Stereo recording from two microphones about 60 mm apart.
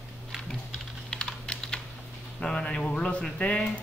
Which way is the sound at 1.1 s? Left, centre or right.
Centre.